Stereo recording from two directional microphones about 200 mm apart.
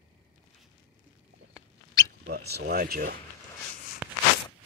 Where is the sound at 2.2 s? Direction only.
55° right (ahead or behind).